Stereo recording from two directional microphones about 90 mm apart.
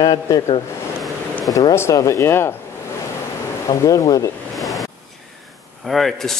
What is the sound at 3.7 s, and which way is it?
Speech, 40° left (ahead or behind).